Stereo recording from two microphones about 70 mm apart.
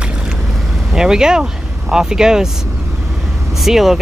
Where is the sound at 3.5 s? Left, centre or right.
Centre.